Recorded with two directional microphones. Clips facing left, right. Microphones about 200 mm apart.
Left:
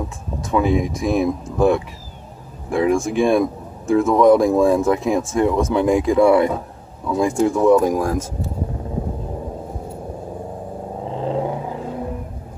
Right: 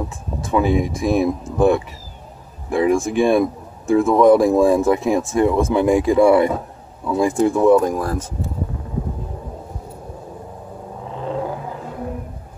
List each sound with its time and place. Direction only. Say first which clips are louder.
0.5 s speech: even; centre (ahead or behind)
7.8 s speech: left 2 dB; 10° left (ahead or behind)
11.1 s vehicle: left 2 dB; 30° left (ahead or behind)